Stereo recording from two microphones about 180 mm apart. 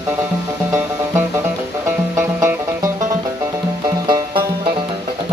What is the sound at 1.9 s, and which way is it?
Music, 15° right (ahead or behind).